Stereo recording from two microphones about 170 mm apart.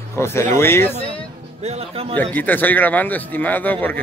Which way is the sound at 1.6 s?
35° right (ahead or behind).